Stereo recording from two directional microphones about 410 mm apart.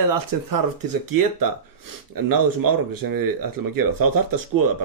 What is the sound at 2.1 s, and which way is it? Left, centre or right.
Speech, right.